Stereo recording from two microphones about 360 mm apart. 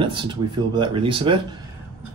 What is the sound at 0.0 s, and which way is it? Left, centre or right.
Speech, centre.